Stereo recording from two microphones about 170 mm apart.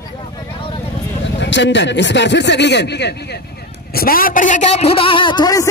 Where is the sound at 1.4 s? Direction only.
90° left.